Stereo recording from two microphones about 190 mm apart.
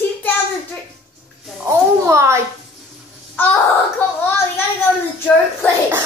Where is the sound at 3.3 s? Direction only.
10° left (ahead or behind).